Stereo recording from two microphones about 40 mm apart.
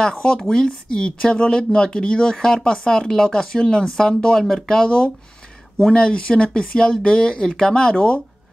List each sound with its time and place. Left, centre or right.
0.0 s speech: left
4.4 s speech: centre; by 8.2 s left